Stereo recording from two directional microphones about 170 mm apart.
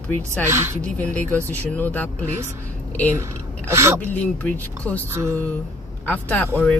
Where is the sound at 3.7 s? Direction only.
15° right (ahead or behind).